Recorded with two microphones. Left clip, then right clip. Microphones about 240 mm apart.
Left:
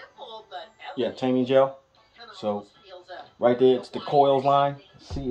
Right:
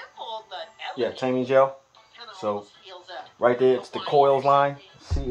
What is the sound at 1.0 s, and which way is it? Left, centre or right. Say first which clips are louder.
Speech: even; right.